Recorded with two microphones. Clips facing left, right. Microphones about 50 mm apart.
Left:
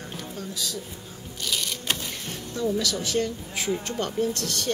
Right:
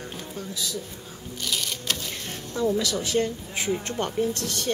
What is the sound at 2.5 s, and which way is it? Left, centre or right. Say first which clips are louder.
Speech: right 2 dB; right.